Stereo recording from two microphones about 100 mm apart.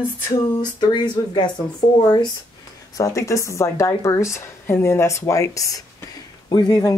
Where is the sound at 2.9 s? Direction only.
35° left (ahead or behind).